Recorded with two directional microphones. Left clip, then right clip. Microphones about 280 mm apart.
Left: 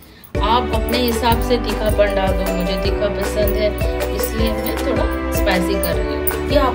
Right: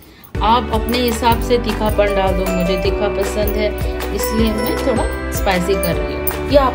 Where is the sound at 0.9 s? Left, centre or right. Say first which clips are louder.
Right 2 dB; right.